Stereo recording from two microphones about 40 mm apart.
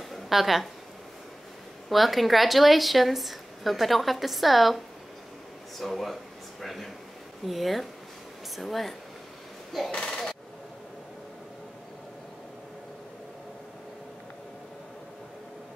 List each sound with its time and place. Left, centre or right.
0.1 s a sound: centre
1.9 s a woman's voice: centre
9.8 s speech: left